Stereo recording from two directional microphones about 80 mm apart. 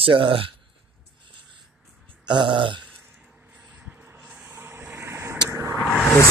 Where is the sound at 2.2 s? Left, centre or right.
Right.